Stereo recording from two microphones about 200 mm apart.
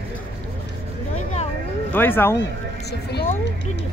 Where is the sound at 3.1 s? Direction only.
45° left (ahead or behind).